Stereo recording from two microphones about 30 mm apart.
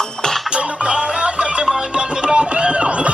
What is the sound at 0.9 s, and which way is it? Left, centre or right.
Music, right.